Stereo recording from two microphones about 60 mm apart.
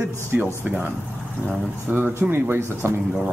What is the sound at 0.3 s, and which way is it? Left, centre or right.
Speech, right.